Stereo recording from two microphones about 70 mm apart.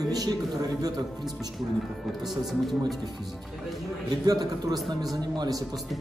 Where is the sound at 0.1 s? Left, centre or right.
Right.